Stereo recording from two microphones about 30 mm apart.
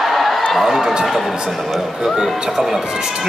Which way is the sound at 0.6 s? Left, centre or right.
Centre.